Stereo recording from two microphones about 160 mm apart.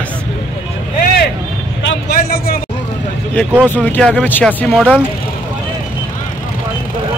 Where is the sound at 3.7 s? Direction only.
10° left (ahead or behind).